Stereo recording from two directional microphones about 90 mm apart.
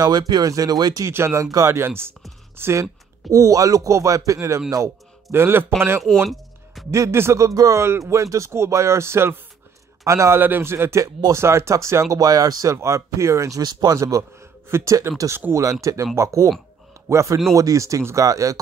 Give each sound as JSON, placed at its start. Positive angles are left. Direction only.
{"t": 0.0, "sound": "speech", "side_deg": -50}
{"t": 1.0, "sound": "a man's voice", "side_deg": -30}
{"t": 6.0, "sound": "a sound", "side_deg": 0}
{"t": 6.9, "sound": "a man's voice", "side_deg": -30}
{"t": 13.6, "sound": "speech", "side_deg": -50}
{"t": 13.9, "sound": "speech", "side_deg": -35}